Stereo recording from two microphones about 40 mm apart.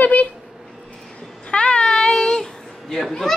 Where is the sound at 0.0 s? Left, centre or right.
Left.